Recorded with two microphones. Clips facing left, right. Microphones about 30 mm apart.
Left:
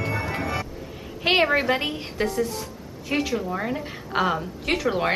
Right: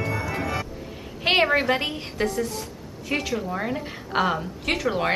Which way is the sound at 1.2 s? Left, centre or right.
Centre.